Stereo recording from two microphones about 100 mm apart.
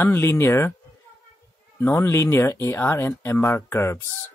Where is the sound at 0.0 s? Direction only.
25° left (ahead or behind).